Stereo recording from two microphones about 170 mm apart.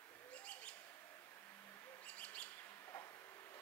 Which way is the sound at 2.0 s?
10° left (ahead or behind).